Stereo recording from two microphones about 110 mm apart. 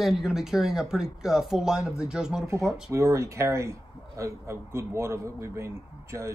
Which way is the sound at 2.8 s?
25° right (ahead or behind).